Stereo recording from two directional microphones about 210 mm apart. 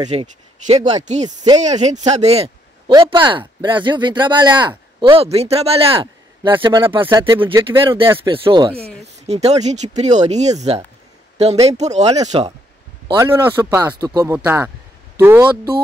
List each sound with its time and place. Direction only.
0.1 s speech: 30° right (ahead or behind)
1.2 s speech: 20° right (ahead or behind)
1.6 s speech: 35° right (ahead or behind)
13.1 s speech: 10° right (ahead or behind)